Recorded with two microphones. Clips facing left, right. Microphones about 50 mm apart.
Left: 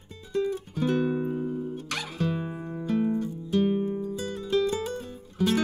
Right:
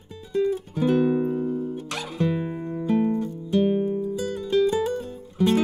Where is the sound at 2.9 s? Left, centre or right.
Right.